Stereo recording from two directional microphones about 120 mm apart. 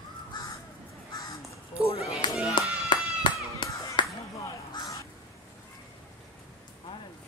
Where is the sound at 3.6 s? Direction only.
40° left (ahead or behind).